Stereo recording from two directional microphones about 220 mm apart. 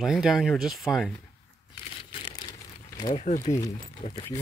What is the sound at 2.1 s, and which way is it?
Crumpling, 25° left (ahead or behind).